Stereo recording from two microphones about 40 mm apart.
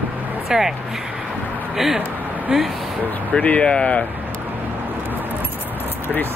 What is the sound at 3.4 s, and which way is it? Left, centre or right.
Speech, left.